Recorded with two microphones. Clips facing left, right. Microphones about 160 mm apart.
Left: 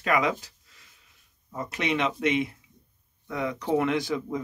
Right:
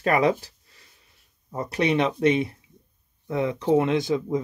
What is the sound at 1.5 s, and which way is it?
Speech, 35° right (ahead or behind).